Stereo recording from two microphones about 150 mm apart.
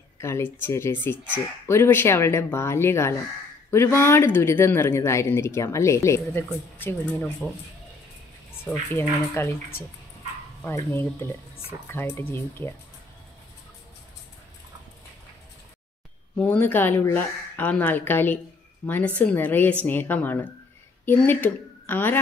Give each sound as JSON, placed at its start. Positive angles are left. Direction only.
{"t": 0.2, "sound": "speech", "side_deg": 15}
{"t": 8.6, "sound": "speech", "side_deg": 15}
{"t": 16.3, "sound": "a woman's voice", "side_deg": 10}